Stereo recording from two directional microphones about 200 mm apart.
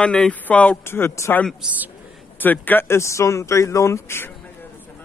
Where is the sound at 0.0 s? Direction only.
5° left (ahead or behind).